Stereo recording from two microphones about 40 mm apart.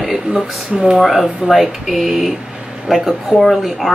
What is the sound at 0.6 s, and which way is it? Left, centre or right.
Speech, right.